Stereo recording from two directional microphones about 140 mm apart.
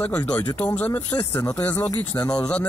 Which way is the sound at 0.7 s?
15° left (ahead or behind).